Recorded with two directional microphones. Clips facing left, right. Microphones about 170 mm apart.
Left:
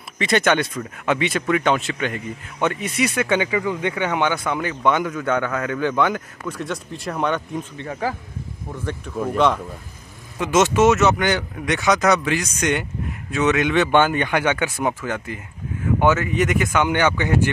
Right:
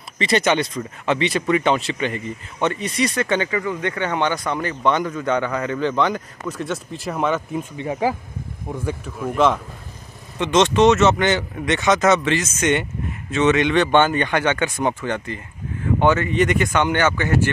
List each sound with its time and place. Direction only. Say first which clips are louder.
0.2 s speech: even; centre (ahead or behind)
7.7 s speech: right 6 dB; 15° right (ahead or behind)
8.8 s speech: left 2 dB; centre (ahead or behind); by 17.5 s 15° left (ahead or behind)